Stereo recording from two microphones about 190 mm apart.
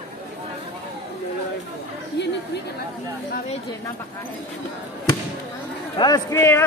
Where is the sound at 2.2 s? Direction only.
65° left (ahead or behind).